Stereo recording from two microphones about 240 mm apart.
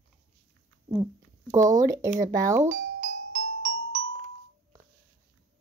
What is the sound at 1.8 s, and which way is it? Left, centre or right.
Speech, centre.